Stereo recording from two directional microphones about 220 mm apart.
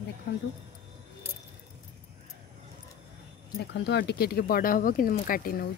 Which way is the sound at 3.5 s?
50° left (ahead or behind).